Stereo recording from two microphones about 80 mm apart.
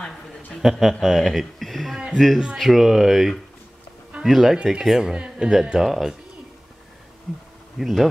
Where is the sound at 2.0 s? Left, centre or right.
Centre.